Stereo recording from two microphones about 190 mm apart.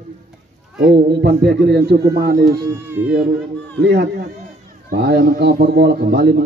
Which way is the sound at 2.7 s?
10° right (ahead or behind).